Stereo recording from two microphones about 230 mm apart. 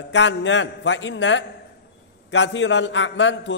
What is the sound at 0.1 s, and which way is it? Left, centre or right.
A man's voice, left.